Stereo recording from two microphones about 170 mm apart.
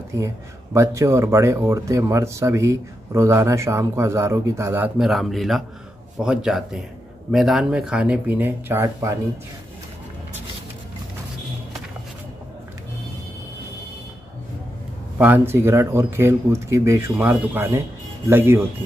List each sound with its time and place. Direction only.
0.7 s speech: 15° right (ahead or behind)
15.1 s speech: 10° right (ahead or behind)